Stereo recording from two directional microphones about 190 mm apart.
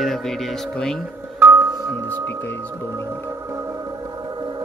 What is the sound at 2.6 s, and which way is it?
Music, 15° right (ahead or behind).